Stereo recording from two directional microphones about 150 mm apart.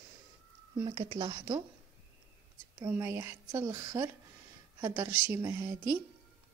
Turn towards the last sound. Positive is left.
turn(degrees=-20)  # may be behind; listen again after turning